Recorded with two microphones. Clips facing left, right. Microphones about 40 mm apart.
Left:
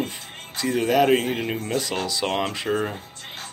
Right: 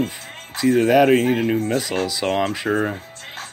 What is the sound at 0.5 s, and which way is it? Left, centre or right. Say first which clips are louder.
Speech: right 5 dB; centre.